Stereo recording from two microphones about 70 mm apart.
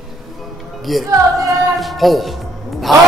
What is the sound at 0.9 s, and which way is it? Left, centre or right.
Speech, centre.